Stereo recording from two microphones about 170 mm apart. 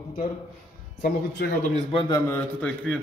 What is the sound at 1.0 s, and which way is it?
Speech, 70° left (ahead or behind).